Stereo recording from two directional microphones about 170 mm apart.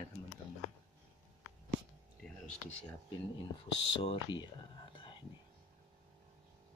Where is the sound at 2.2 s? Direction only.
Centre (ahead or behind).